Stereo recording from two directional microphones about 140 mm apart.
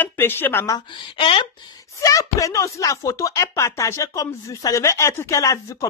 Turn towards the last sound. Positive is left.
turn(degrees=20)  # may be behind; listen again after turning